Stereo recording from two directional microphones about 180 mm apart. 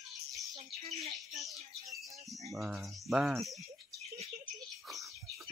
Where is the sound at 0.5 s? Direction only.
35° right (ahead or behind).